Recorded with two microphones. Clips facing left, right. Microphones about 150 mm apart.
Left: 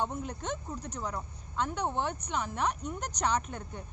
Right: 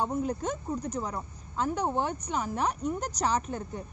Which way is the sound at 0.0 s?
40° right (ahead or behind).